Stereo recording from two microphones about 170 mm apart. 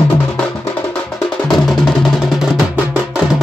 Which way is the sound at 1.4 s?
5° left (ahead or behind).